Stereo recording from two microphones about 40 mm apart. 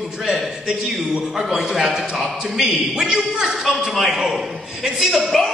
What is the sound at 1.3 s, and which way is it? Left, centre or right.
A man's voice, centre.